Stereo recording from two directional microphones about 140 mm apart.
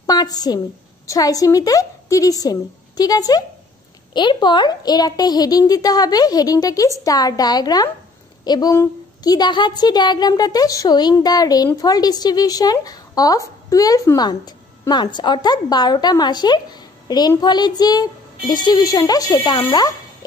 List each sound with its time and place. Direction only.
0.0 s a woman's voice: 30° left (ahead or behind)